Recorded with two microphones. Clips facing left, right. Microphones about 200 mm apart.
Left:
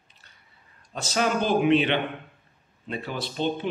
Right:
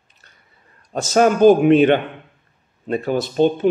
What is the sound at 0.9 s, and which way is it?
Speech, 45° right (ahead or behind).